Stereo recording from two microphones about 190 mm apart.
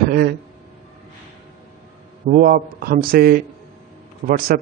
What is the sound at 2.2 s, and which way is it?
A man's voice, 50° right (ahead or behind).